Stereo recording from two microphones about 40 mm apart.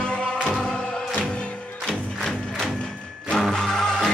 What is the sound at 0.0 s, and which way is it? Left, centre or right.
Music, left.